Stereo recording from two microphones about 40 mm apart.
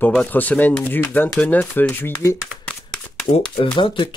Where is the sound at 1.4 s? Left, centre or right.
Left.